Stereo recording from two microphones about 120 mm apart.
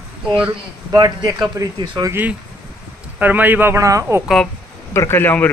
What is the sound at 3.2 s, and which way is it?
Speech, 15° right (ahead or behind).